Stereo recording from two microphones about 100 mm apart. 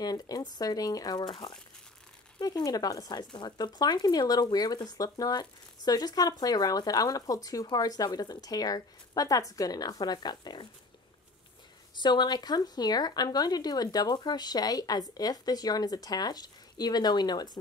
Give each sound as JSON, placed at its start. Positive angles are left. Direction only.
{"t": 0.0, "sound": "speech", "side_deg": 40}
{"t": 2.4, "sound": "speech", "side_deg": 40}
{"t": 11.9, "sound": "speech", "side_deg": 50}